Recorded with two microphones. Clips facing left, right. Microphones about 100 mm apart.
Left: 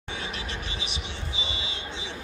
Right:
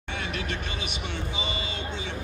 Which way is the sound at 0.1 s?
55° right (ahead or behind).